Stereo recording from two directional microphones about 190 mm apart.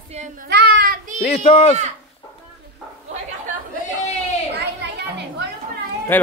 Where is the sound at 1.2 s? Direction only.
35° left (ahead or behind).